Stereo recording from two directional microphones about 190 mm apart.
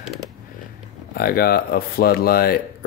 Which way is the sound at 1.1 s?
50° left (ahead or behind).